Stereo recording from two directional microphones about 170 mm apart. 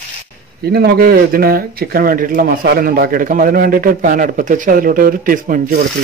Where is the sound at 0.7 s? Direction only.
65° right (ahead or behind).